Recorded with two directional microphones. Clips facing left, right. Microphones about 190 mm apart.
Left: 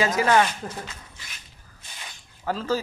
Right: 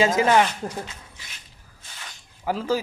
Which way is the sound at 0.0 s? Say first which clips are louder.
Right 2 dB; 20° right (ahead or behind).